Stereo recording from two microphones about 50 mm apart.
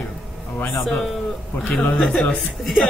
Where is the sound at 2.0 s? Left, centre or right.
Centre.